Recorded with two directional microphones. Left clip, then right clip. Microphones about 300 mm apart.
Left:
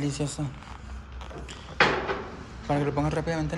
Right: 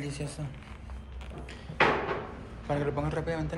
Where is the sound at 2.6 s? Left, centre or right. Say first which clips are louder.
Left 4 dB; centre.